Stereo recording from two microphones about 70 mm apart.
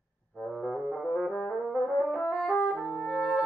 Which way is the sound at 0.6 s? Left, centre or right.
Centre.